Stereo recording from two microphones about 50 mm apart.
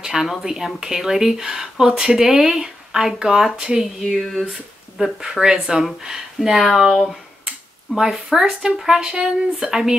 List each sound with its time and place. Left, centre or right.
0.0 s speech: centre
4.2 s speech: centre
4.9 s speech: centre
6.6 s speech: centre